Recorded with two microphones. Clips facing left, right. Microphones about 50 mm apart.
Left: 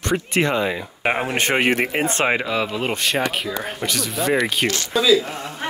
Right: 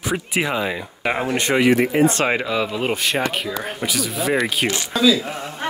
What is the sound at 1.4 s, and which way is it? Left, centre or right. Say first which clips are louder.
Speech: right 4 dB; left.